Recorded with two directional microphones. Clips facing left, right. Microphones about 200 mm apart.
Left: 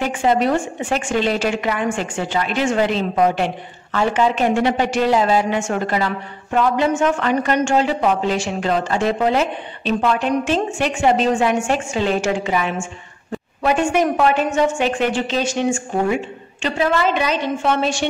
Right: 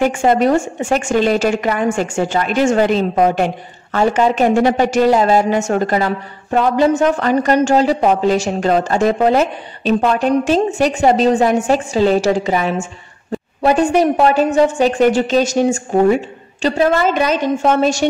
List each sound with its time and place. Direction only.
0.0 s a woman's voice: 45° right (ahead or behind)